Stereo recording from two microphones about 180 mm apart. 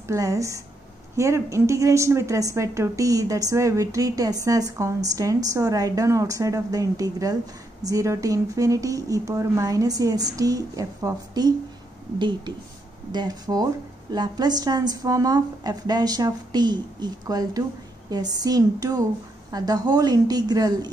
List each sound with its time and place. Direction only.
0.1 s a woman's voice: 15° right (ahead or behind)